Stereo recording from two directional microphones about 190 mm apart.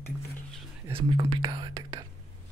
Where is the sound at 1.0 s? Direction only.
30° right (ahead or behind).